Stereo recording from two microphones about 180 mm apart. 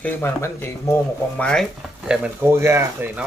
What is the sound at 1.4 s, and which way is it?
Speech, 5° left (ahead or behind).